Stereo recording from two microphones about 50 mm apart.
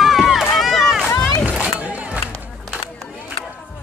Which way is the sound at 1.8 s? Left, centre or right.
Right.